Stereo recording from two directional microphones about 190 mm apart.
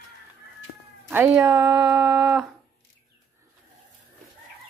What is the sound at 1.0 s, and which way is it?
Speech, 10° right (ahead or behind).